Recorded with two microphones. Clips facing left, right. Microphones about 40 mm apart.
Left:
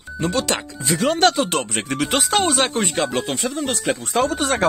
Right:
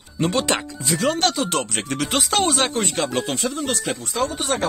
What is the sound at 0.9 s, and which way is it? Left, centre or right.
Speech, centre.